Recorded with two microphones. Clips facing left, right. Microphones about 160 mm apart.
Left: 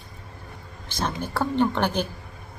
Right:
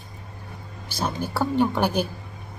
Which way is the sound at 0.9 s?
10° right (ahead or behind).